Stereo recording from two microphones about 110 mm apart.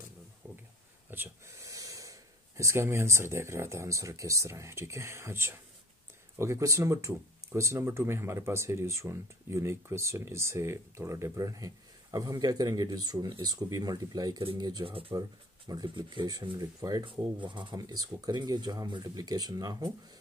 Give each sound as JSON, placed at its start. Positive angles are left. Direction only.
{"t": 1.1, "sound": "a sound", "side_deg": -20}
{"t": 1.7, "sound": "speech", "side_deg": -30}
{"t": 14.9, "sound": "speech", "side_deg": -55}
{"t": 15.7, "sound": "speech", "side_deg": -45}
{"t": 17.0, "sound": "speech", "side_deg": -50}